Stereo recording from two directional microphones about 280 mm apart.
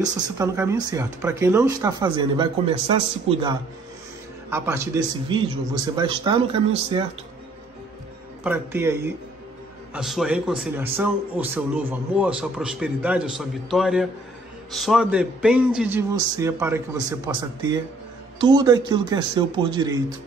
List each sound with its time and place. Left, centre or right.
0.0 s a man's voice: centre
8.5 s a man's voice: centre